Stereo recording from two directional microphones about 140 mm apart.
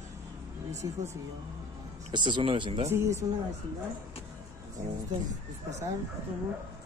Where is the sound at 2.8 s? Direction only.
20° right (ahead or behind).